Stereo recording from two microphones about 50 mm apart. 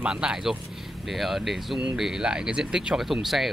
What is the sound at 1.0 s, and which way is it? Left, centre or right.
Speech, centre.